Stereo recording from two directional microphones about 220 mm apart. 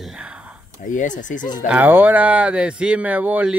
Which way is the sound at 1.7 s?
5° right (ahead or behind).